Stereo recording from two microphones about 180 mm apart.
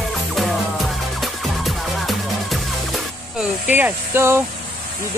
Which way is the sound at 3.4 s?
10° right (ahead or behind).